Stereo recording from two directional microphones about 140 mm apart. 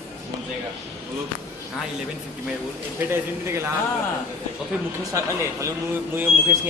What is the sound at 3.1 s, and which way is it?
Speech, 20° right (ahead or behind).